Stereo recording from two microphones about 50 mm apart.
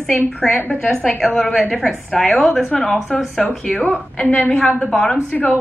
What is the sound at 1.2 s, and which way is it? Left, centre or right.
A woman's voice, centre.